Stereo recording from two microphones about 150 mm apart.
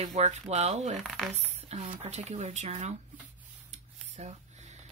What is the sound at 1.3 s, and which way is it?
Speech, 45° right (ahead or behind).